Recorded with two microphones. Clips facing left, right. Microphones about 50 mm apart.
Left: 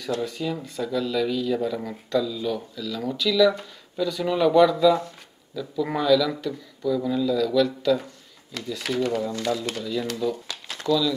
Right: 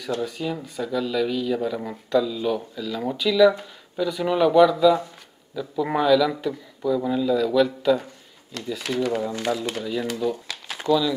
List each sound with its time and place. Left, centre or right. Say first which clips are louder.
0.2 s speech: right 1 dB; centre
9.1 s speech: right 1 dB; centre